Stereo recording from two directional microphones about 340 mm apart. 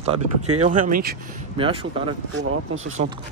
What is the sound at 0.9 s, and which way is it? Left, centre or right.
Speech, right.